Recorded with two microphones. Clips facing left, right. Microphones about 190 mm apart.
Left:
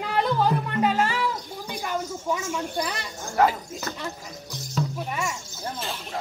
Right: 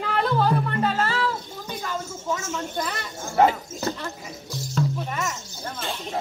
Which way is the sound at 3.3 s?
25° right (ahead or behind).